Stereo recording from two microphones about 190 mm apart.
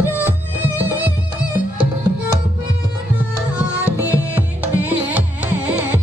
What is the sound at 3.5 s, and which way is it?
Music, 5° right (ahead or behind).